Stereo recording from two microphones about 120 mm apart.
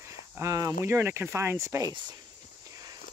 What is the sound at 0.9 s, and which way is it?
Speech, 20° right (ahead or behind).